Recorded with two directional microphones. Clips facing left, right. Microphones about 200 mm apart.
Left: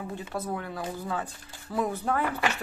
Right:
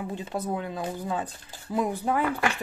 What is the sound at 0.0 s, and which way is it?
Speech, 20° right (ahead or behind).